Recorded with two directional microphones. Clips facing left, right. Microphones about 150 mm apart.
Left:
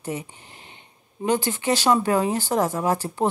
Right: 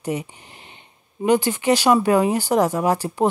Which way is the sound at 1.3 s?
15° right (ahead or behind).